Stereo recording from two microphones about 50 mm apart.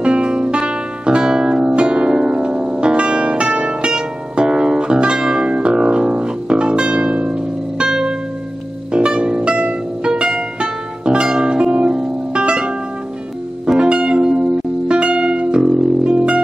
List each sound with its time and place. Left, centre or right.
0.0 s music: centre
16.0 s music: right